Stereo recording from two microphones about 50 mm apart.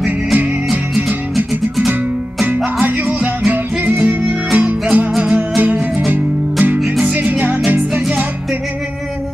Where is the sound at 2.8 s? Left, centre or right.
Right.